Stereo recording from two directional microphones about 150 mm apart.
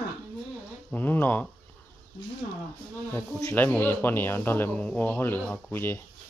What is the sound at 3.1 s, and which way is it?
Speech, 15° left (ahead or behind).